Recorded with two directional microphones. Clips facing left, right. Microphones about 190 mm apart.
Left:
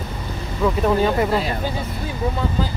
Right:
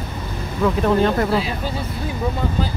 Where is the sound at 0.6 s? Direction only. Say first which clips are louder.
Right 1 dB; 5° left (ahead or behind).